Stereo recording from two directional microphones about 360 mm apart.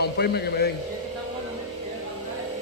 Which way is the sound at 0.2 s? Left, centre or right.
Left.